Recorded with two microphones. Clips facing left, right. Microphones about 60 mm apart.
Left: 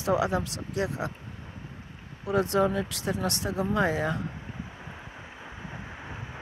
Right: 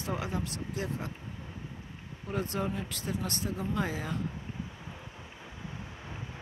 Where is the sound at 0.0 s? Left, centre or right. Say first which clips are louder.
Left 9 dB; left.